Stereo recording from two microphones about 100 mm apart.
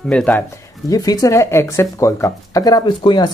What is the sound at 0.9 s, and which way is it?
Speech, 35° left (ahead or behind).